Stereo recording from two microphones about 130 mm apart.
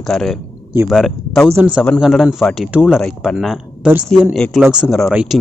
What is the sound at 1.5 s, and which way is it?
Speech, 10° right (ahead or behind).